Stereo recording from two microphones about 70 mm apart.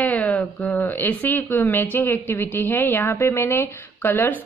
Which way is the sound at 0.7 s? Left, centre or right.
Left.